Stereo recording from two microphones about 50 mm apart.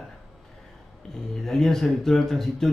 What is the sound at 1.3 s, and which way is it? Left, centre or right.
A man's voice, centre.